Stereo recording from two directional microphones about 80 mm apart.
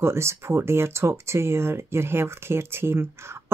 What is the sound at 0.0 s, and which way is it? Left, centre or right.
Speech, right.